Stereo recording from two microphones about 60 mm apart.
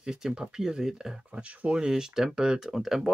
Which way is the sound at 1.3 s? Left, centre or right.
Right.